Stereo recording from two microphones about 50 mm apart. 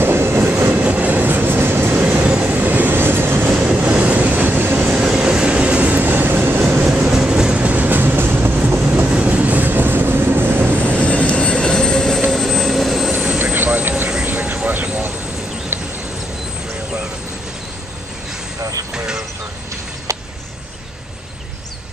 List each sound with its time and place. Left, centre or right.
0.0 s train: right
0.8 s train: right
2.0 s train: right
3.5 s train: right
4.9 s train: centre; by 6.8 s right
6.9 s train: centre; by 10.9 s right
10.9 s vehicle: left
12.3 s vehicle: centre
13.4 s vehicle: right
14.7 s vehicle: right
18.9 s vehicle: centre
20.1 s a sound: right